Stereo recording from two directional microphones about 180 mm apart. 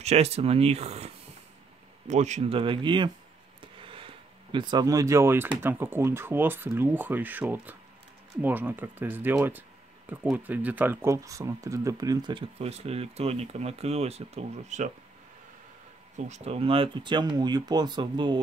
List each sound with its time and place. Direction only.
0.0 s speech: 35° right (ahead or behind)
16.3 s speech: 35° right (ahead or behind)